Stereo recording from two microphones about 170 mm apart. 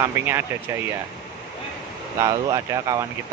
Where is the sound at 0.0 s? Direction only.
15° right (ahead or behind).